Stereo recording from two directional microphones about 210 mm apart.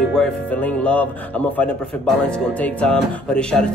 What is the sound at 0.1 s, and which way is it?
Speech, 5° left (ahead or behind).